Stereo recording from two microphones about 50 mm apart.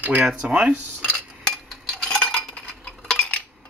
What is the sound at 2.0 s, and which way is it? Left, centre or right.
Cutlery, centre.